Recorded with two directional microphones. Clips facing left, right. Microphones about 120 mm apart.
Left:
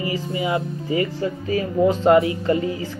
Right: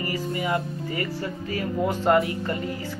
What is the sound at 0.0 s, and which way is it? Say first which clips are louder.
Speech: left 3 dB; 10° left (ahead or behind).